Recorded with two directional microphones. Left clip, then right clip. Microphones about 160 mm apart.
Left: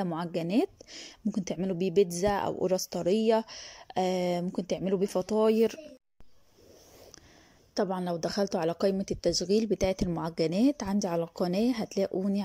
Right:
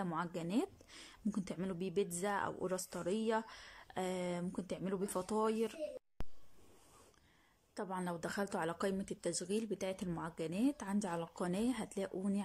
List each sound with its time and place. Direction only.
0.0 s speech: 20° left (ahead or behind)
5.5 s speech: 30° left (ahead or behind)
7.7 s speech: 25° left (ahead or behind)